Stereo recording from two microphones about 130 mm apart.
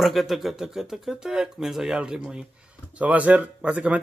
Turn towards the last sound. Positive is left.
turn(degrees=-10)  # may be behind; listen again after turning